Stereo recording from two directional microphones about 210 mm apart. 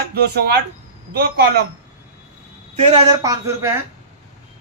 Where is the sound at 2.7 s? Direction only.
30° right (ahead or behind).